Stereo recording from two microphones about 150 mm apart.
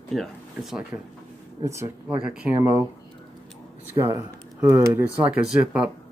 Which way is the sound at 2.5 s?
20° right (ahead or behind).